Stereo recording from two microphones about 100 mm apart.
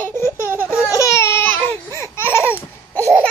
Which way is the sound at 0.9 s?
30° left (ahead or behind).